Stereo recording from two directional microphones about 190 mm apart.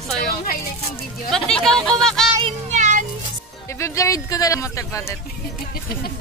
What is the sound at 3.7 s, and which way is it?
Speech, 15° left (ahead or behind).